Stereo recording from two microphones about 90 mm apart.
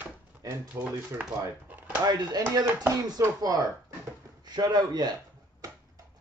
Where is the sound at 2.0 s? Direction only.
50° right (ahead or behind).